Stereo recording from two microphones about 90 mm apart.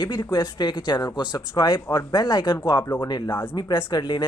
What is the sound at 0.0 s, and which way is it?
Speech, 55° left (ahead or behind).